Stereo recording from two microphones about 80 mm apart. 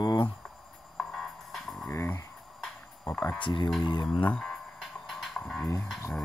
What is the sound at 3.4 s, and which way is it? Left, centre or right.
Speech, left.